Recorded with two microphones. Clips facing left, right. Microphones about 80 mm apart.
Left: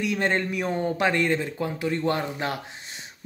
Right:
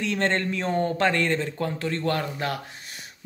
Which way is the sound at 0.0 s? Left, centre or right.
Centre.